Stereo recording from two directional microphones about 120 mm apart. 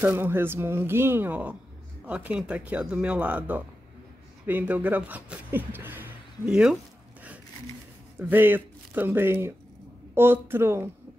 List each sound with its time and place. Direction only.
0.0 s speech: 20° right (ahead or behind)
8.2 s speech: 15° right (ahead or behind)